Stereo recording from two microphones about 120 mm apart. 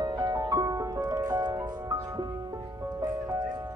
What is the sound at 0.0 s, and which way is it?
Music, 30° right (ahead or behind).